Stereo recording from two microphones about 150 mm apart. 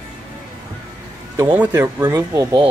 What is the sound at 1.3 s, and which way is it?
Speech, 15° right (ahead or behind).